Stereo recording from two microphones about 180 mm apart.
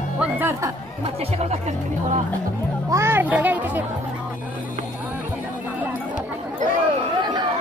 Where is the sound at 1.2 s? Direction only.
35° right (ahead or behind).